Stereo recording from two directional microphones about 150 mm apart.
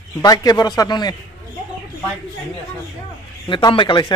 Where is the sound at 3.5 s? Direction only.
30° left (ahead or behind).